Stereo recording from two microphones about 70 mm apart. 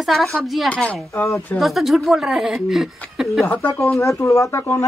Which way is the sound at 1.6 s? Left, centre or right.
Centre.